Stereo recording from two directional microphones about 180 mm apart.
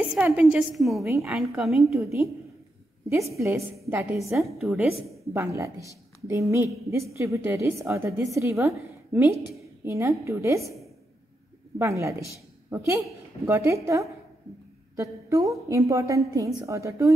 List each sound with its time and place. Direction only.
0.0 s a woman's voice: 5° right (ahead or behind)
1.0 s a woman's voice: 15° right (ahead or behind)
1.6 s a woman's voice: centre (ahead or behind)
2.0 s a woman's voice: 15° right (ahead or behind)
3.7 s a woman's voice: 15° right (ahead or behind)
4.6 s a woman's voice: centre (ahead or behind)
5.3 s a woman's voice: 15° right (ahead or behind)
11.8 s a woman's voice: 15° right (ahead or behind)